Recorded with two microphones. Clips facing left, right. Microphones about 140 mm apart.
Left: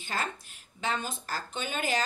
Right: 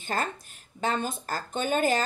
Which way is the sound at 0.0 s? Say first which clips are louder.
Right 4 dB; 50° right (ahead or behind).